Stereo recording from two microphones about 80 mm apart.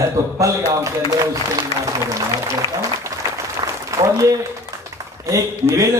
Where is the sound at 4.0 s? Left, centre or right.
Right.